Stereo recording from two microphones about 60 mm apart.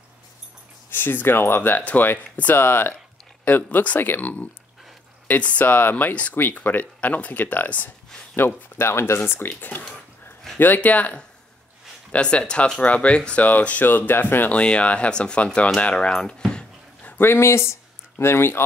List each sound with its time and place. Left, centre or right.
0.8 s speech: left
14.6 s speech: centre
17.2 s speech: left